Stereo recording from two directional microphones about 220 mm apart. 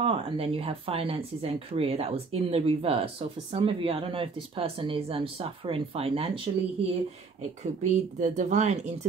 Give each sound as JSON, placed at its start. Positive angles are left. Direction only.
{"t": 0.0, "sound": "speech", "side_deg": -25}
{"t": 7.6, "sound": "speech", "side_deg": -30}